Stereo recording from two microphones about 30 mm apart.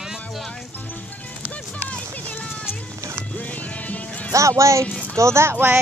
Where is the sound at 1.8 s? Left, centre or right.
Left.